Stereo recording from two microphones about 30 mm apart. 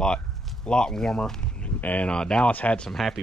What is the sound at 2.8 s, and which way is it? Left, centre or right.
Speech, centre.